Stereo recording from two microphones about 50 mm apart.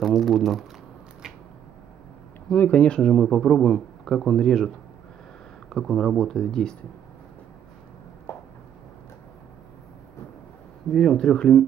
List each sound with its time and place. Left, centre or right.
0.0 s speech: centre
2.6 s speech: left
3.0 s speech: centre
8.3 s a sound: left
11.0 s speech: centre
11.3 s speech: left